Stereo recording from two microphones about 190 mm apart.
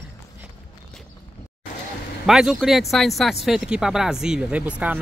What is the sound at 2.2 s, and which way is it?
Speech, centre (ahead or behind).